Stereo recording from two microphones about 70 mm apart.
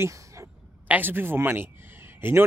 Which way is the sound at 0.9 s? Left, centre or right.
Right.